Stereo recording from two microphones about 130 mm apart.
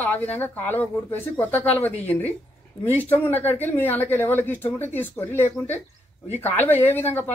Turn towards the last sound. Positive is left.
turn(degrees=15)  # may be behind; listen again after turning